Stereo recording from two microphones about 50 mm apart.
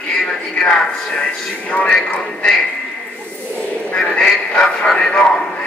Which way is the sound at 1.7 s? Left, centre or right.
Left.